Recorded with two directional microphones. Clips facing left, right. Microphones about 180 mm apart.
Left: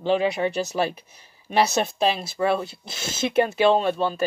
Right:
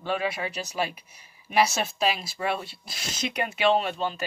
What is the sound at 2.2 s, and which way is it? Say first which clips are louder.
Speech: left 7 dB; 30° left (ahead or behind).